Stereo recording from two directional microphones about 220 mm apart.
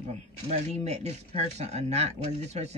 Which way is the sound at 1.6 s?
30° right (ahead or behind).